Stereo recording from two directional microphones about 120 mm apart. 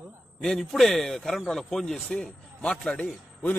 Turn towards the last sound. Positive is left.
turn(degrees=10)  # may be behind; listen again after turning